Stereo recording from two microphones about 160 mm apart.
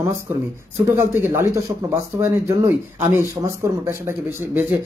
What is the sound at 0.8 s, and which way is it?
Speech, 15° right (ahead or behind).